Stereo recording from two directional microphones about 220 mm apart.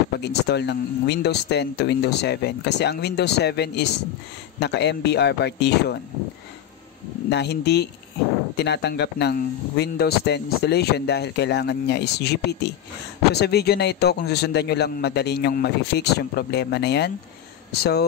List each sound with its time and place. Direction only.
0.2 s speech: 50° left (ahead or behind)
7.2 s speech: 50° left (ahead or behind)